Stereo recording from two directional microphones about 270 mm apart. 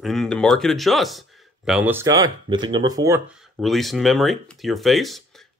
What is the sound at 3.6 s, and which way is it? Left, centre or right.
Speech, centre.